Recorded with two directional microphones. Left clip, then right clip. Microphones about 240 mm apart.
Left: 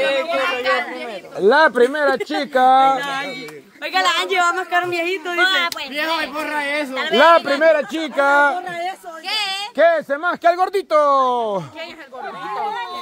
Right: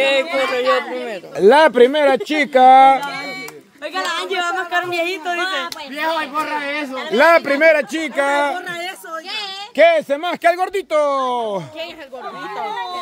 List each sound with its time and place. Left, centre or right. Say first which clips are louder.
0.0 s a sound: right 2 dB; right
1.4 s speech: right 3 dB; right
2.0 s speech: right 3 dB; right
2.7 s speech: right 5 dB; right
3.0 s a sound: left 2 dB; left
3.9 s a woman's voice: left 4 dB; left
4.7 s speech: even; centre
5.4 s a woman's voice: left 9 dB; left
5.9 s speech: right 3 dB; centre
7.2 s speech: even; centre
9.8 s speech: right 3 dB; centre
10.5 s speech: left 1 dB; centre